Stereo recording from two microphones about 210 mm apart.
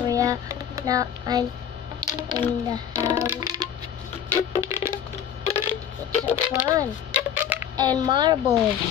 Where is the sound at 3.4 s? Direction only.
15° right (ahead or behind).